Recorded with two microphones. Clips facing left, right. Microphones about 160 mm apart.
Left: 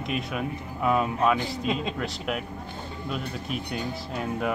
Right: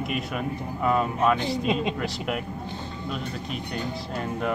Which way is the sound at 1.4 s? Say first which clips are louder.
Right 3 dB; 20° right (ahead or behind).